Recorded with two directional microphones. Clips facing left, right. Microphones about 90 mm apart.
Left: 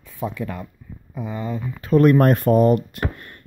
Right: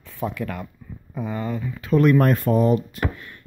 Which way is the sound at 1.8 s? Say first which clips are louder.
Left 3 dB; 40° left (ahead or behind).